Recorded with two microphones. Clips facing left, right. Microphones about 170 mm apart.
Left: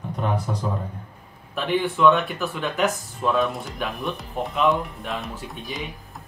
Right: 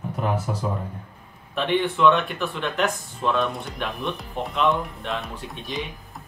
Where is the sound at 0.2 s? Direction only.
5° right (ahead or behind).